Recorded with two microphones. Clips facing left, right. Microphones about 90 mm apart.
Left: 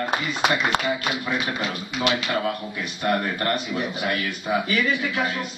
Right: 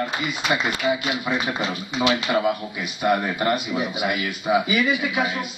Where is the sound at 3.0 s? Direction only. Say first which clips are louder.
Right 3 dB; 10° right (ahead or behind).